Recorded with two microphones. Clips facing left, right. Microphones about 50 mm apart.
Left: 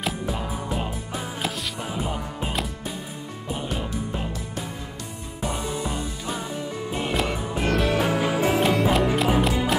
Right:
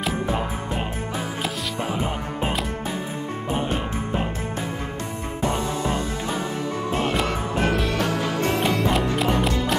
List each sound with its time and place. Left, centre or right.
1.9 s music: right
3.5 s music: right
7.0 s music: centre